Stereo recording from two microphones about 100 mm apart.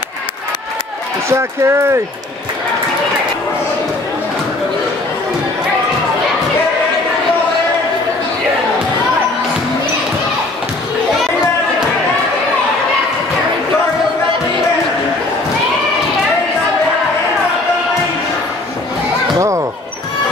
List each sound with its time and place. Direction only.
1.3 s speech: 25° right (ahead or behind)
19.3 s basketball bounce: 30° right (ahead or behind)